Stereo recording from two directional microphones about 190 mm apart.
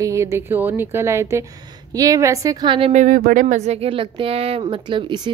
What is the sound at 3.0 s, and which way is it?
Speech, 45° right (ahead or behind).